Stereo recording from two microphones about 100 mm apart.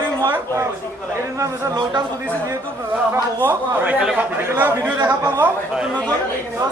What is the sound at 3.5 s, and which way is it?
A man's voice, 15° right (ahead or behind).